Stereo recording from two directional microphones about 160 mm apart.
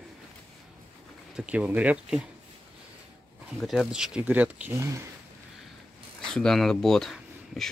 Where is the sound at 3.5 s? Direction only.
Centre (ahead or behind); by 5.0 s 15° right (ahead or behind).